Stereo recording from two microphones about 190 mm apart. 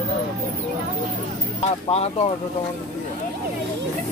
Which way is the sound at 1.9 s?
35° left (ahead or behind).